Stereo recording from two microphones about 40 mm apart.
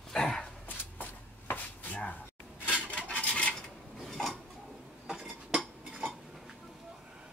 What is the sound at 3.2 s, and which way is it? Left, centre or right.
Dishes, left.